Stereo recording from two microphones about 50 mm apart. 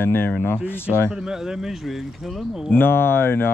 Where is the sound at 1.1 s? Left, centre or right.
Centre.